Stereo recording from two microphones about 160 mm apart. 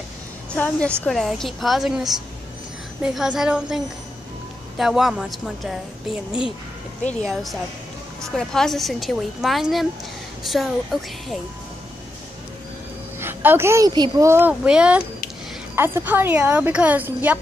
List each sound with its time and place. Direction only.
0.6 s a woman's voice: 5° left (ahead or behind)
8.4 s a woman's voice: 5° left (ahead or behind)
13.2 s speech: 15° right (ahead or behind)
14.5 s speech: 5° right (ahead or behind)